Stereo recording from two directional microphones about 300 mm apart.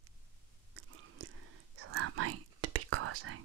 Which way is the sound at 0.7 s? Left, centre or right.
Right.